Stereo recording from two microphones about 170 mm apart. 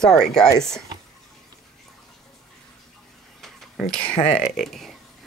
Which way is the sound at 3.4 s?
5° left (ahead or behind).